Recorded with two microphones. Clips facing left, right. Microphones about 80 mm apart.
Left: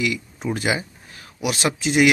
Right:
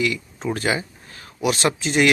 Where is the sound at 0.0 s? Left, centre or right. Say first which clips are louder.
Right 1 dB; centre.